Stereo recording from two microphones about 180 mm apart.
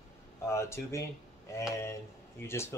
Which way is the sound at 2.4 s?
15° left (ahead or behind).